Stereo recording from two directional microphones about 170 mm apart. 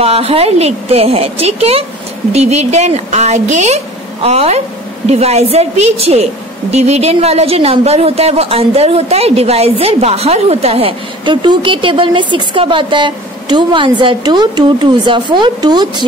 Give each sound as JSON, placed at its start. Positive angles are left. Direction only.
{"t": 0.0, "sound": "speech", "side_deg": -35}